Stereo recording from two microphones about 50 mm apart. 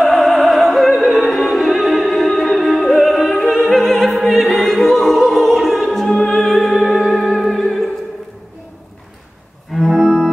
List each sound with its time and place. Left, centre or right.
0.0 s opera: centre
1.3 s music: centre
9.7 s organ: centre